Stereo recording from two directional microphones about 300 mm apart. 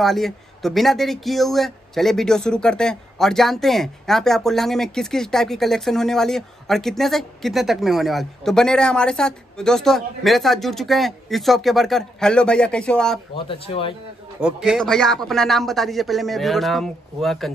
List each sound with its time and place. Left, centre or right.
0.0 s speech: centre
13.5 s speech: centre
14.4 s speech: centre